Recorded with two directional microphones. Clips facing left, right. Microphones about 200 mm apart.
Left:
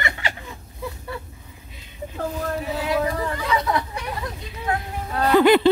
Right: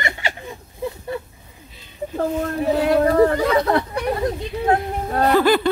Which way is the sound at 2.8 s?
55° right (ahead or behind).